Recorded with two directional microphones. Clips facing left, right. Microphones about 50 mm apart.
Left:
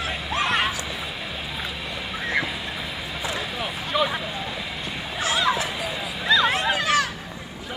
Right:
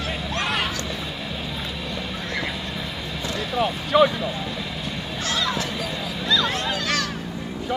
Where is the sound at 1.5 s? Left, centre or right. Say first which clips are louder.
Right 1 dB; centre.